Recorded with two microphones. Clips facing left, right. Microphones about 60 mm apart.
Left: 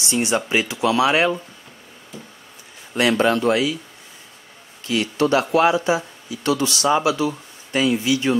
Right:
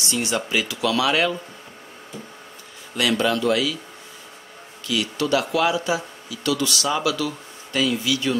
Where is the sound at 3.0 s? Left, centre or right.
Left.